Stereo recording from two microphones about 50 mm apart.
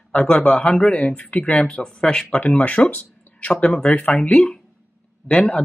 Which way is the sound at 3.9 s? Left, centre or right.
Left.